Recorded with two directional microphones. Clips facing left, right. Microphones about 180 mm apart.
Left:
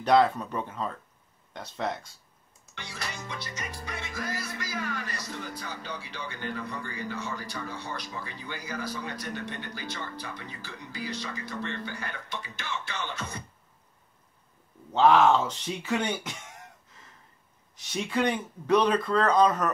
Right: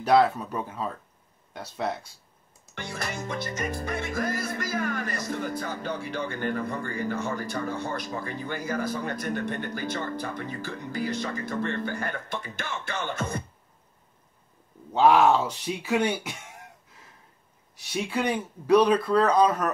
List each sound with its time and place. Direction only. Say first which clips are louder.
0.0 s speech: right 1 dB; 5° right (ahead or behind)
2.7 s music: right 6 dB; 50° right (ahead or behind)
14.9 s speech: right 1 dB; 10° right (ahead or behind)
17.7 s speech: even; 10° right (ahead or behind)